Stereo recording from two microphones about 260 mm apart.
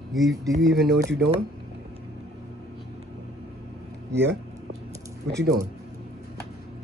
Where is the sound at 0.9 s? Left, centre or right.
Right.